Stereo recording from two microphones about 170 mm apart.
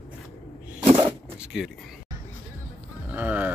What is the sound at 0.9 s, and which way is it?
Shuffling cards, 5° right (ahead or behind).